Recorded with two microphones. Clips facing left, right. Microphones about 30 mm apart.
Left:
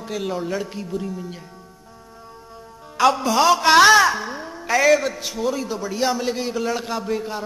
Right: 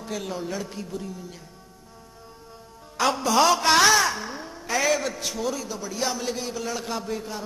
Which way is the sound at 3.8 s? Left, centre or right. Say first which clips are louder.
Left 6 dB; left.